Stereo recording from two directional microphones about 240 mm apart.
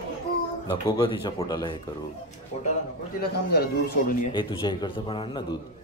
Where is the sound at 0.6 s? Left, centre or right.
Centre.